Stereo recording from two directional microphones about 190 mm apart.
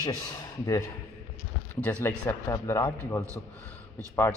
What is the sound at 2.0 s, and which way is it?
Speech, 15° left (ahead or behind).